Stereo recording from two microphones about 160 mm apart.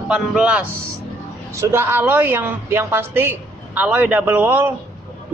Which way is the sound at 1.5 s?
15° right (ahead or behind).